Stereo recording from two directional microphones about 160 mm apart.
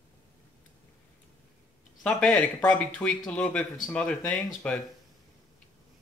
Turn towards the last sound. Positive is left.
turn(degrees=5)  # may be behind; listen again after turning